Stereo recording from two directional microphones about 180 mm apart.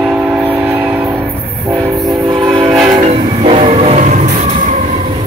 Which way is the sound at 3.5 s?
35° right (ahead or behind).